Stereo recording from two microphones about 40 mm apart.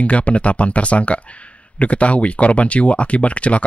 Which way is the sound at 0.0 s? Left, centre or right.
Left.